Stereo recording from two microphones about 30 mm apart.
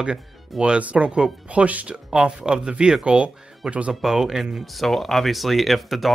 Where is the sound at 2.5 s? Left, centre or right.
Right.